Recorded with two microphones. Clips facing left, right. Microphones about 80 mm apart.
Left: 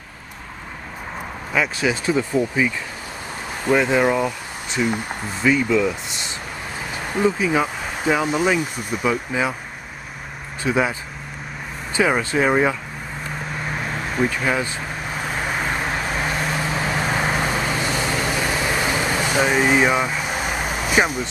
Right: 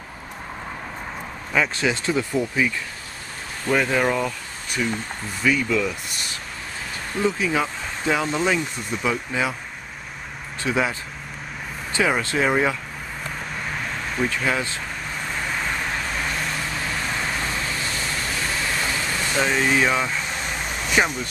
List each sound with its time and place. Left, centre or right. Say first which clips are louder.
1.5 s speech: left 1 dB; centre
3.6 s speech: left 3 dB; centre
10.6 s speech: left 3 dB; centre
13.7 s vehicle: left 3 dB; centre